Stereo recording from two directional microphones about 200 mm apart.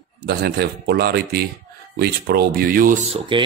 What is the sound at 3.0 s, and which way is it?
Speech, 25° right (ahead or behind).